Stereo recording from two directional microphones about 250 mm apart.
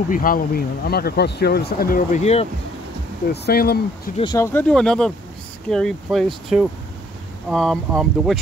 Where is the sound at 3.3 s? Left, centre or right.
Left.